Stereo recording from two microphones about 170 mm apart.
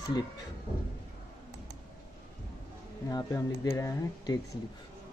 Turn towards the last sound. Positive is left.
turn(degrees=20)  # may be behind; listen again after turning